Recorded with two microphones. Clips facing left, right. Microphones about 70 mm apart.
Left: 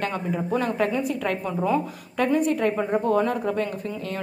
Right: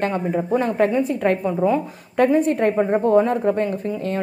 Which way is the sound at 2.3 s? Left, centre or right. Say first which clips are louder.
Right 5 dB; right.